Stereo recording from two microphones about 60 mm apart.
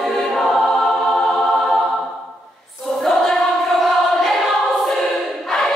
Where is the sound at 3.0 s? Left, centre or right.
Centre.